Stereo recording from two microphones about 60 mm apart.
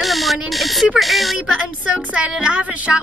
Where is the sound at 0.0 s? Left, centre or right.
Centre.